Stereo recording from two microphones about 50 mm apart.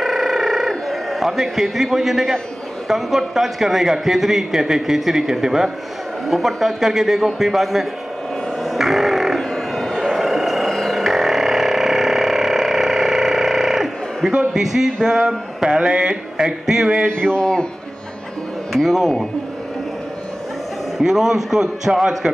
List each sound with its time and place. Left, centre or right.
0.0 s a sound: centre
2.9 s a man's voice: centre
8.6 s a sound: centre
14.5 s a man's voice: centre
17.3 s a man's voice: centre
18.7 s a man's voice: centre
21.0 s a man's voice: centre